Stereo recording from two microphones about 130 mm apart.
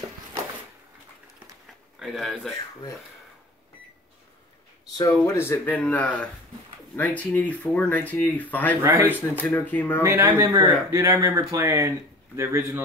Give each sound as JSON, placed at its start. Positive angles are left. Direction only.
{"t": 2.0, "sound": "speech", "side_deg": 0}
{"t": 5.1, "sound": "speech", "side_deg": 15}
{"t": 8.8, "sound": "speech", "side_deg": -15}
{"t": 9.4, "sound": "speech", "side_deg": 15}
{"t": 10.0, "sound": "speech", "side_deg": -20}